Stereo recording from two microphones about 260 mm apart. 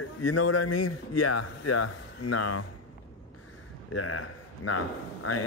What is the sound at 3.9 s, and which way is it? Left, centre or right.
Speech, left.